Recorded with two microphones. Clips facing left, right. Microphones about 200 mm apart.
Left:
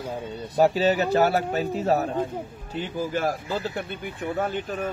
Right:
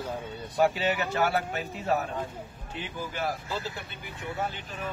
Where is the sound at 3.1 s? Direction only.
50° left (ahead or behind).